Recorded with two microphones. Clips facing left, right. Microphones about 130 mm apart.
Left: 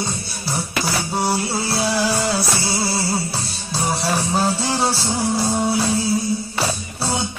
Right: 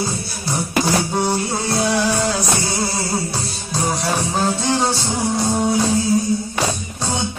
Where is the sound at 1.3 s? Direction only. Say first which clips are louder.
Right 1 dB; 5° left (ahead or behind).